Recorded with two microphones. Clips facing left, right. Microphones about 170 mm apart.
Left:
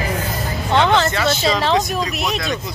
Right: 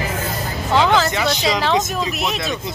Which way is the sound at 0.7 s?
Centre (ahead or behind).